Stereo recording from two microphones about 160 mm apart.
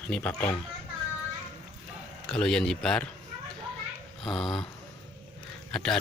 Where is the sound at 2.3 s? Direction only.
5° left (ahead or behind).